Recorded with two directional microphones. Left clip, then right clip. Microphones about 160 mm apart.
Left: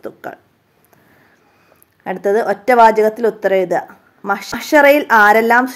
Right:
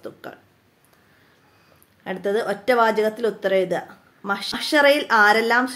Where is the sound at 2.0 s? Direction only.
40° left (ahead or behind).